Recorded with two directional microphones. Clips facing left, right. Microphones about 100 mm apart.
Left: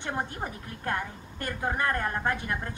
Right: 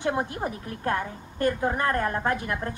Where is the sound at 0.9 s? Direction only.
40° right (ahead or behind).